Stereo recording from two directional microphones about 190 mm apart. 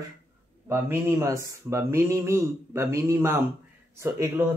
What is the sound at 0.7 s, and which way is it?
Speech, 15° right (ahead or behind).